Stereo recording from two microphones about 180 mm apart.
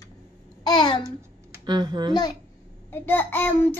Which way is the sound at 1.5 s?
25° right (ahead or behind).